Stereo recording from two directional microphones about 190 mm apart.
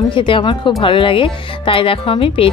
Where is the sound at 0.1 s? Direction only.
25° left (ahead or behind).